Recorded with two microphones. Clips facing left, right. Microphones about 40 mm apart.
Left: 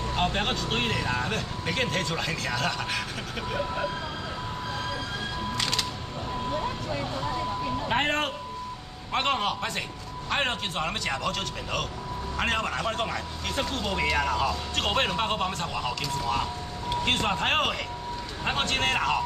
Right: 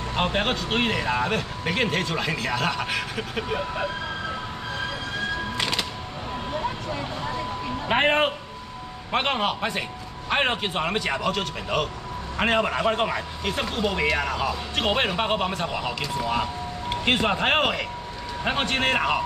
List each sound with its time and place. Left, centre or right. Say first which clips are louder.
0.1 s a man's voice: right 4 dB; centre
5.6 s music: right 2 dB; centre
7.9 s a man's voice: right 7 dB; right